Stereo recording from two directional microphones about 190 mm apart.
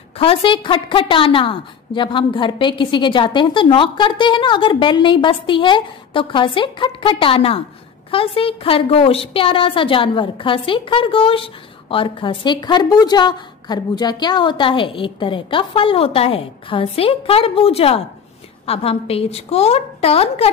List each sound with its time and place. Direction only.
0.2 s a woman's voice: 30° left (ahead or behind)